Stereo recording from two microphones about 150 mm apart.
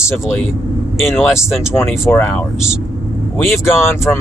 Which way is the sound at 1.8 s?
15° left (ahead or behind).